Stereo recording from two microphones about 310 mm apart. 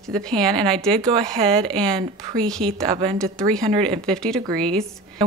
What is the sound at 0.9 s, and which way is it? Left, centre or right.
Speech, centre.